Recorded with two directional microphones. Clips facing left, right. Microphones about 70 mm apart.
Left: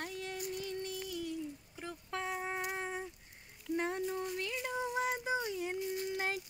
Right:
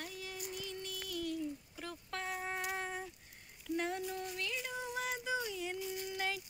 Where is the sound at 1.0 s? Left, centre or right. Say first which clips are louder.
Right 1 dB; centre.